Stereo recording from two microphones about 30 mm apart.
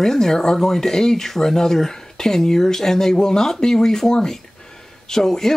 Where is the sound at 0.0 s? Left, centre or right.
Centre.